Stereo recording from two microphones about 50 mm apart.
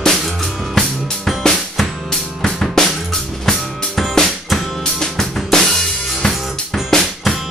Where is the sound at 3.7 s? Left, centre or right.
Centre.